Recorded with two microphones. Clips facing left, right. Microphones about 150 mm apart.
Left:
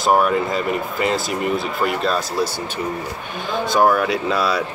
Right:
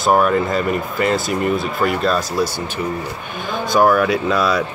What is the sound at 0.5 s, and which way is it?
Speech, 45° right (ahead or behind).